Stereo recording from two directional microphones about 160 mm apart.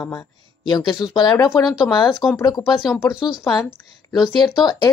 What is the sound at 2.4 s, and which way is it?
Speech, 25° left (ahead or behind).